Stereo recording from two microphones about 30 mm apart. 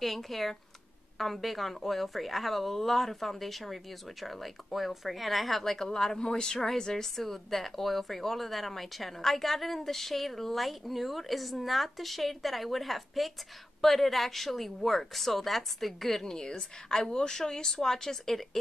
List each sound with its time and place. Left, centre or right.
0.0 s speech: centre
5.6 s a woman's voice: centre
7.2 s speech: centre
16.3 s a woman's voice: left